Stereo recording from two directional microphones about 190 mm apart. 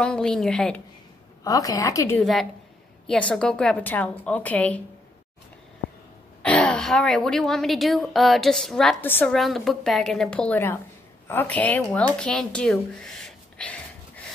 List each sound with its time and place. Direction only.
0.0 s a woman's voice: 5° left (ahead or behind)
1.4 s a woman's voice: 20° left (ahead or behind)
2.1 s a woman's voice: centre (ahead or behind)
6.4 s a woman's voice: 5° left (ahead or behind)